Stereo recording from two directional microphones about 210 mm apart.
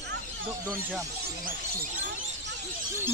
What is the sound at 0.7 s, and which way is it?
Speech, 10° right (ahead or behind).